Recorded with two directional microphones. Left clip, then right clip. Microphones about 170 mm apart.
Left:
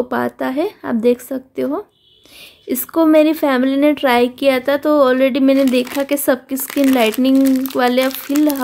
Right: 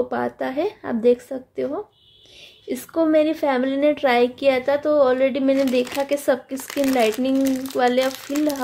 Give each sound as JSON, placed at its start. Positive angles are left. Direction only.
{"t": 0.1, "sound": "a woman's voice", "side_deg": 35}
{"t": 5.9, "sound": "speech", "side_deg": 20}
{"t": 6.1, "sound": "a woman's voice", "side_deg": 35}
{"t": 6.7, "sound": "speech", "side_deg": 15}
{"t": 7.0, "sound": "a woman's voice", "side_deg": 35}